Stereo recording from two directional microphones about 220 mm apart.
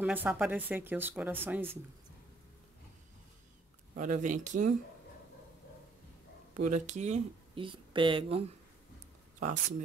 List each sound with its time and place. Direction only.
0.0 s speech: 10° right (ahead or behind)
3.9 s speech: 35° right (ahead or behind)
6.5 s speech: 35° right (ahead or behind)
9.4 s speech: 35° right (ahead or behind)